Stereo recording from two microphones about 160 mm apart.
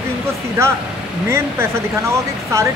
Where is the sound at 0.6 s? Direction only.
15° right (ahead or behind).